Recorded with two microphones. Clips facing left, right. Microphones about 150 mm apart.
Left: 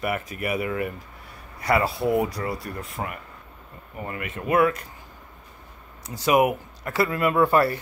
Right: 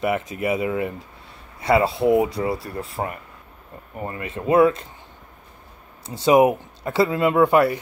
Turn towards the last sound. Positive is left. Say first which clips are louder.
# right 3 dB
turn(degrees=-15)  # may be behind; listen again after turning